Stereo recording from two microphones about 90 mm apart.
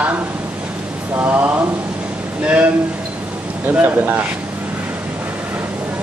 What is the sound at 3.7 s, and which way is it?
Speech, 20° right (ahead or behind).